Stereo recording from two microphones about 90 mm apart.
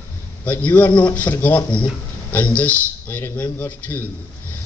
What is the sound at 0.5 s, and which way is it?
A man's voice, 20° left (ahead or behind).